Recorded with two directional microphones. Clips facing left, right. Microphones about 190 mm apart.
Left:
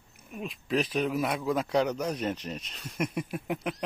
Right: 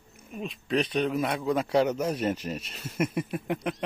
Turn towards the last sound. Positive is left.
turn(degrees=0)  # may be behind; listen again after turning